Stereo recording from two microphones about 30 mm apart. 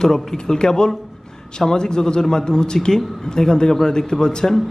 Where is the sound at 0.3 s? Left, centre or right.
Left.